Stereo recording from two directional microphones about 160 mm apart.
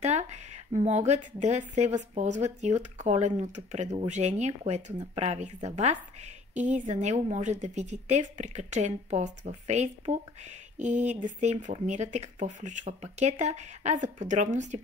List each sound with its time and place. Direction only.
0.0 s speech: 45° right (ahead or behind)